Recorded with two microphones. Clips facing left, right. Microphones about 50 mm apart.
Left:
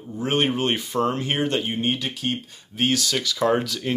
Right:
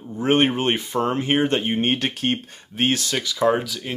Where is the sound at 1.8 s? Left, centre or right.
Right.